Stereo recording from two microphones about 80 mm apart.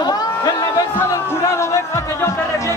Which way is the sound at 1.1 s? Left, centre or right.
Left.